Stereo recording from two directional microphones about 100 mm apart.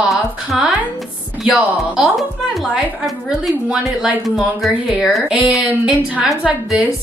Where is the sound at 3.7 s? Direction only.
5° right (ahead or behind).